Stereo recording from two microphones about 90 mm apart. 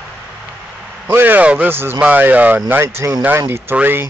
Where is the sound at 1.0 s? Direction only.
20° right (ahead or behind).